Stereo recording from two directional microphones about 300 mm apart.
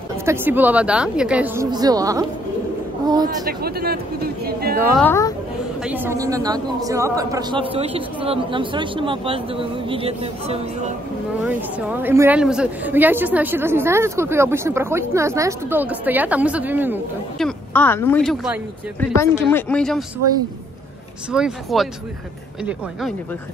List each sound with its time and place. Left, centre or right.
0.2 s a woman's voice: centre
3.3 s speech: right
4.9 s speech: centre
5.9 s a woman's voice: centre
11.4 s a woman's voice: centre
21.3 s speech: centre